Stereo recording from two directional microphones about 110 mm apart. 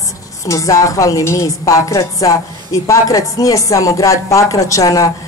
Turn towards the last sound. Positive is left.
turn(degrees=30)  # may be behind; listen again after turning